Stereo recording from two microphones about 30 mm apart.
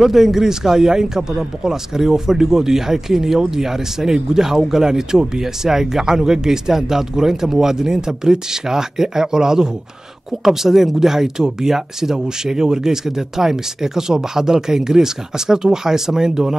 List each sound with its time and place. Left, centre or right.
0.0 s speech: centre